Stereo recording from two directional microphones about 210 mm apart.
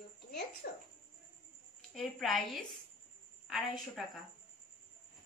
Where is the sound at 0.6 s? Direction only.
50° left (ahead or behind).